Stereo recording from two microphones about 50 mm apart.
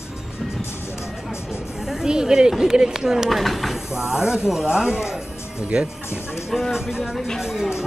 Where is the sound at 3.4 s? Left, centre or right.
Centre.